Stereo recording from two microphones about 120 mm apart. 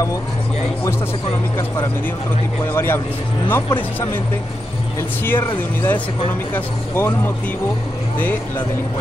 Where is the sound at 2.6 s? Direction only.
20° left (ahead or behind).